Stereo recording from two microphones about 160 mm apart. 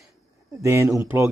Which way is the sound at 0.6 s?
20° right (ahead or behind).